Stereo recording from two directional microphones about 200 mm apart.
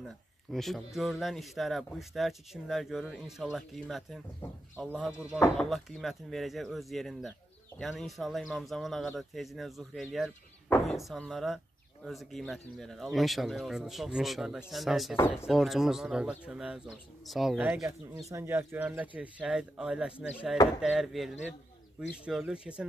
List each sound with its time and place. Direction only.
0.0 s speech: centre (ahead or behind)